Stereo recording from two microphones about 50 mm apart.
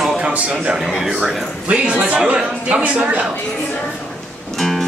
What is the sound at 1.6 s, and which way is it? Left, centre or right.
Speech, right.